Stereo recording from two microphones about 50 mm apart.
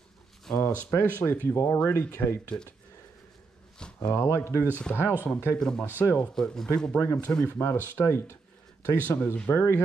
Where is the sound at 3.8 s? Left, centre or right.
Centre.